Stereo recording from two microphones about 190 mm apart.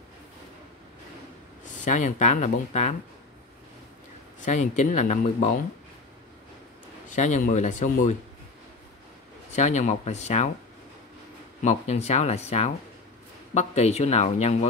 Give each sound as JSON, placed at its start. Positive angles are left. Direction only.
{"t": 1.9, "sound": "speech", "side_deg": 40}
{"t": 4.5, "sound": "speech", "side_deg": 40}
{"t": 7.1, "sound": "speech", "side_deg": 40}
{"t": 9.6, "sound": "speech", "side_deg": 35}
{"t": 11.6, "sound": "speech", "side_deg": 35}